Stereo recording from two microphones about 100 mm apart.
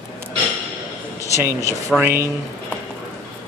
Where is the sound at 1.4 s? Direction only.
30° right (ahead or behind).